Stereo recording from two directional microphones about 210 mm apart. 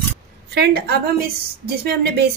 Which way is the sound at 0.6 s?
50° right (ahead or behind).